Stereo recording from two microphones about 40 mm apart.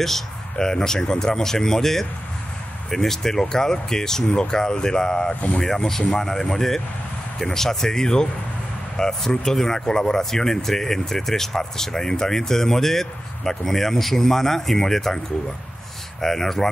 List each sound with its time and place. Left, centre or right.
0.0 s speech: centre
16.2 s speech: centre